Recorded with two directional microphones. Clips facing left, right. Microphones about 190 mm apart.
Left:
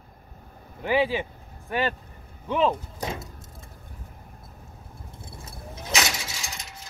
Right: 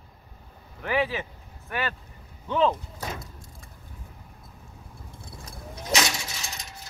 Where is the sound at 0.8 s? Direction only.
25° left (ahead or behind).